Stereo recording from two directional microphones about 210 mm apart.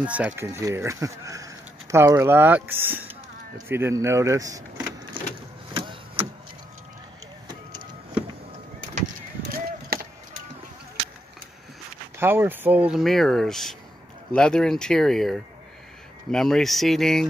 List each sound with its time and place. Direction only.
0.0 s speech: 5° right (ahead or behind)
5.7 s a sound: 25° right (ahead or behind)
8.9 s vehicle: 40° right (ahead or behind)
12.2 s speech: 10° right (ahead or behind)